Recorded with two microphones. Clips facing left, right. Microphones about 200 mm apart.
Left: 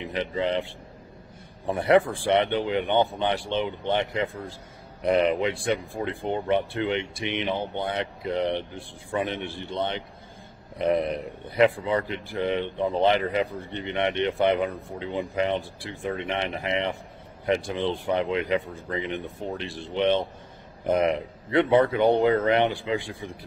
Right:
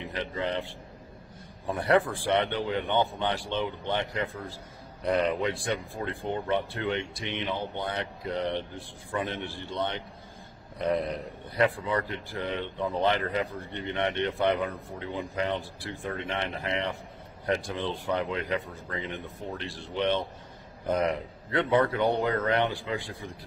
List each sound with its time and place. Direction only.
0.0 s a man's voice: 15° left (ahead or behind)